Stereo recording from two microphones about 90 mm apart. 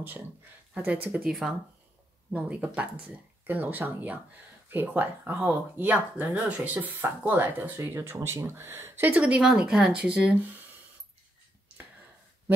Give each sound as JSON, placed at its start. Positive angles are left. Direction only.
{"t": 0.7, "sound": "speech", "side_deg": -15}
{"t": 1.2, "sound": "speech", "side_deg": -5}
{"t": 2.3, "sound": "speech", "side_deg": -15}
{"t": 9.1, "sound": "speech", "side_deg": -10}